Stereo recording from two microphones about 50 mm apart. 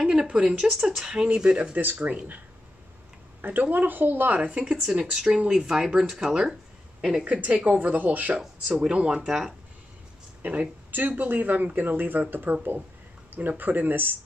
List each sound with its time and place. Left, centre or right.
0.0 s a sound: centre
0.3 s speech: right
0.7 s speech: centre
2.0 s speech: right
3.3 s a sound: right
3.7 s speech: right
4.4 s speech: centre
7.4 s speech: right
8.6 s speech: right
10.4 s speech: right